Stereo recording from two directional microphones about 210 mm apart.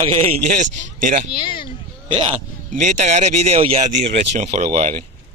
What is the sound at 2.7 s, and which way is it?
A man's voice, 35° right (ahead or behind).